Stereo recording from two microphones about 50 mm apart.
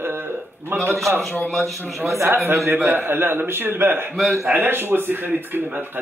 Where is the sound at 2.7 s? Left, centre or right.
Right.